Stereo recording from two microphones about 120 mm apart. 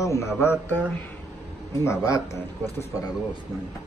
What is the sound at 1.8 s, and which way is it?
Speech, 25° left (ahead or behind).